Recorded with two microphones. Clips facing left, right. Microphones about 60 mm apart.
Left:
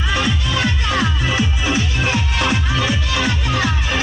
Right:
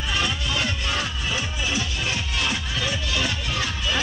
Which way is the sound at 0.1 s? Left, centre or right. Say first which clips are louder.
Left 5 dB; left.